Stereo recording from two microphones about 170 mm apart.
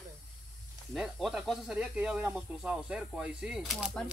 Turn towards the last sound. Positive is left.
turn(degrees=0)  # may be behind; listen again after turning